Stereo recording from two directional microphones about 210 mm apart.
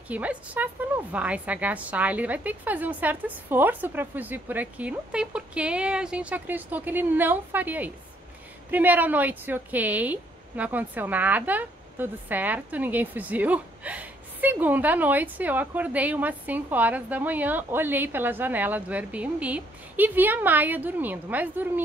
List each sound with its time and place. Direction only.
0.1 s a woman's voice: 5° right (ahead or behind)